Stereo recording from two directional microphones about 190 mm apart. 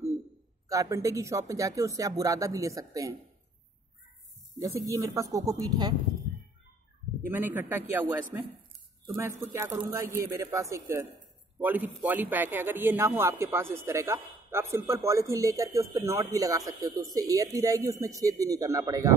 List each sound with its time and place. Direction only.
0.7 s a man's voice: 15° right (ahead or behind)
4.6 s a man's voice: 15° right (ahead or behind)
7.2 s a man's voice: 10° right (ahead or behind)